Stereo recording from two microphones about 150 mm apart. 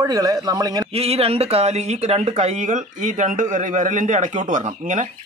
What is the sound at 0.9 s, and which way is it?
Speech, 40° right (ahead or behind).